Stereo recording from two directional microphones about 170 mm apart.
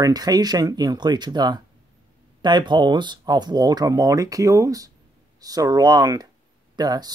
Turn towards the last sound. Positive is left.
turn(degrees=-25)  # may be behind; listen again after turning